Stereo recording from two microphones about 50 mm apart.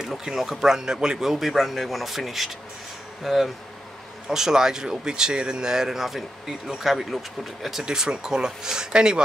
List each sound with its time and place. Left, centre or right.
0.2 s a man's voice: centre
7.8 s speech: centre